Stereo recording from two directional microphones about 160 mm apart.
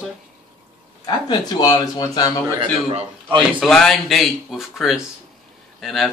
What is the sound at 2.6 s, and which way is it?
Speech, 40° right (ahead or behind).